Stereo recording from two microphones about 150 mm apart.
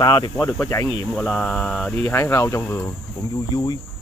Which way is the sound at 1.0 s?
5° left (ahead or behind).